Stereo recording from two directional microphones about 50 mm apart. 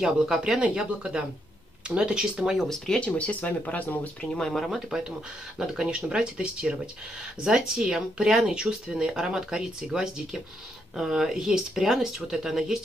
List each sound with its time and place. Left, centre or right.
0.0 s speech: centre
3.0 s speech: left
4.2 s speech: centre
4.5 s speech: centre